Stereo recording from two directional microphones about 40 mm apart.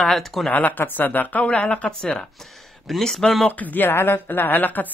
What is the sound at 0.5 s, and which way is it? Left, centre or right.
Speech, left.